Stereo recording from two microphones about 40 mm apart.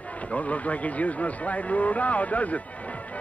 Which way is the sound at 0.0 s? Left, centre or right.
Left.